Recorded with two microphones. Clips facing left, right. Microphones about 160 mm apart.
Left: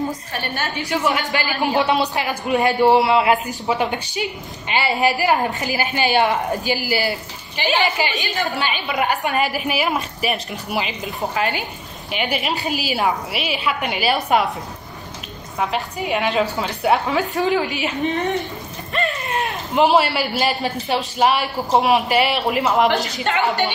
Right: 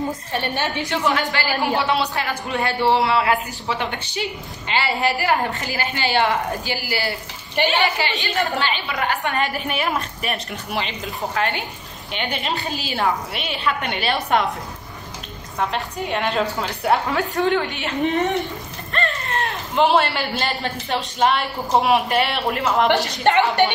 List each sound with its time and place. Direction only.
0.3 s a woman's voice: 25° right (ahead or behind)
0.8 s a woman's voice: 15° left (ahead or behind)
15.7 s speech: 5° left (ahead or behind)
19.2 s a man's voice: 10° left (ahead or behind)